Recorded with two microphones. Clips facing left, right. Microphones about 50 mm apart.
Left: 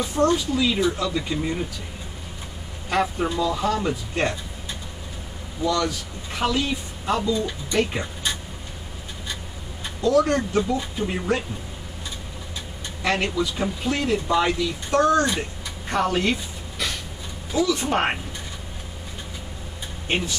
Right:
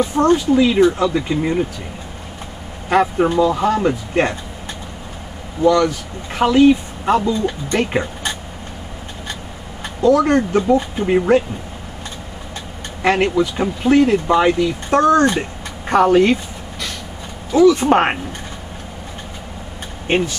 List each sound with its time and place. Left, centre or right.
0.0 s speech: right
2.9 s speech: right
5.6 s speech: right
10.0 s speech: right
13.0 s speech: right
17.6 s speech: right